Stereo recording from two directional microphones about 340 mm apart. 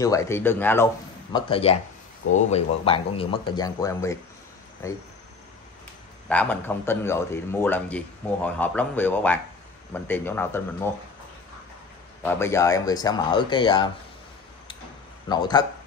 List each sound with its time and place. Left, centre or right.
0.0 s speech: centre
1.3 s speech: centre
6.2 s speech: centre
12.2 s speech: centre
15.2 s speech: centre